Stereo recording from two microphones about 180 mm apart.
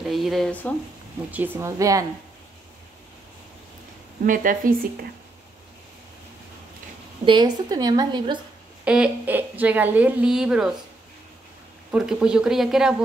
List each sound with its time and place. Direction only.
0.1 s speech: centre (ahead or behind)
1.3 s speech: 10° right (ahead or behind)
4.3 s speech: 50° right (ahead or behind)
7.2 s a woman's voice: 25° right (ahead or behind)
8.8 s speech: 5° right (ahead or behind)
11.9 s speech: 5° right (ahead or behind)